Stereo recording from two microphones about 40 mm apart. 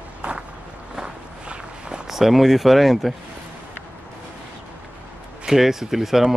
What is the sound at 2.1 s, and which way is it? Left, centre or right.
Speech, centre.